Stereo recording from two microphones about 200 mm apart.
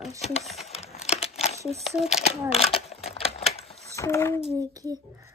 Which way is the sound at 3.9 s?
15° left (ahead or behind).